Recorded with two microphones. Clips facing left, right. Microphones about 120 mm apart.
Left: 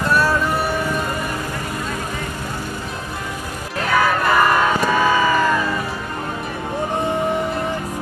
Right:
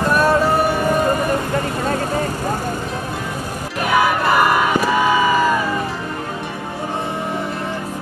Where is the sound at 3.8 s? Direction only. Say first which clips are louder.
Right 1 dB; 15° right (ahead or behind).